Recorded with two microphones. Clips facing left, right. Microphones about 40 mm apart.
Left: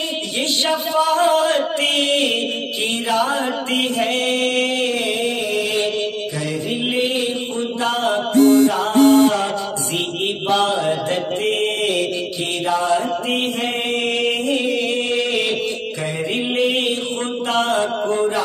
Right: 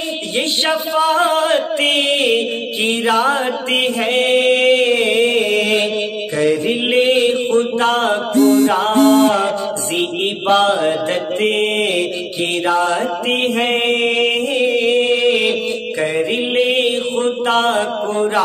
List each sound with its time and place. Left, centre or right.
0.7 s mantra: right
3.1 s mantra: right
9.1 s mantra: right
10.5 s mantra: right